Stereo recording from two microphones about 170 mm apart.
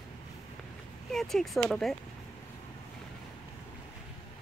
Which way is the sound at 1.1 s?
Centre (ahead or behind).